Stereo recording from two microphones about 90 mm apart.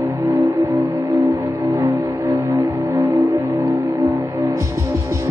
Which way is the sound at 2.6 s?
40° right (ahead or behind).